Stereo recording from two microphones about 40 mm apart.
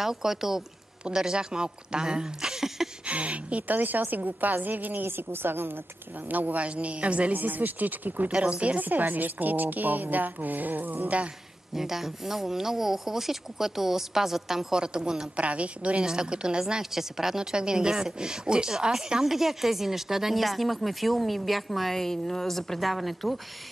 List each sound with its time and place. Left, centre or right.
0.0 s a woman's voice: centre
3.1 s speech: right
3.6 s a woman's voice: right
5.0 s a woman's voice: right
6.2 s a woman's voice: right
7.3 s a woman's voice: right
8.3 s a woman's voice: right
8.8 s a woman's voice: right
11.7 s speech: centre
14.7 s a woman's voice: centre
15.3 s a woman's voice: right
16.0 s a woman's voice: right; by 23.4 s centre